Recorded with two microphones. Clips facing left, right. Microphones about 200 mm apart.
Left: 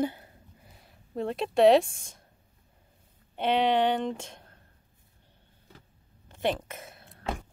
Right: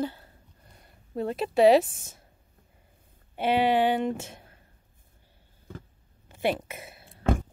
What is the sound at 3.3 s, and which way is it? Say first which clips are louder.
Speech: right 1 dB; 5° right (ahead or behind).